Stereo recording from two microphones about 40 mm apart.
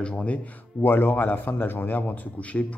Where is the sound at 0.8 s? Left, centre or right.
Left.